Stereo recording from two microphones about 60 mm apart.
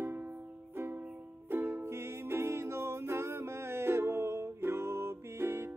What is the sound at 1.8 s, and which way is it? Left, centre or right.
Music, right.